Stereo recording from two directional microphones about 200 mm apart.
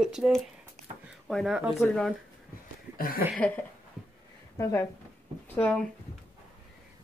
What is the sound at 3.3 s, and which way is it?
Speech, 10° left (ahead or behind).